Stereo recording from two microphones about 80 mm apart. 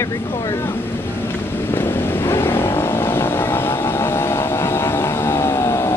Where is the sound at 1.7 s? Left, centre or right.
Left.